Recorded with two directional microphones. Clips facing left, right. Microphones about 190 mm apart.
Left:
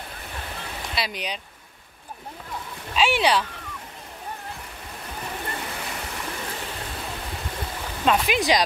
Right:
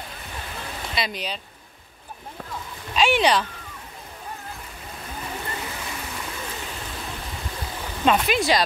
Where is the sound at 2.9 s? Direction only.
5° left (ahead or behind).